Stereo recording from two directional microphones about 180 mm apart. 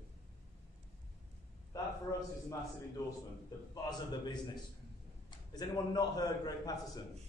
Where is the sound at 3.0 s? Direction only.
15° left (ahead or behind).